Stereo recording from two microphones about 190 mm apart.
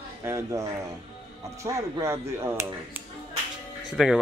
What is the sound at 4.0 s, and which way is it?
Speech, 5° right (ahead or behind).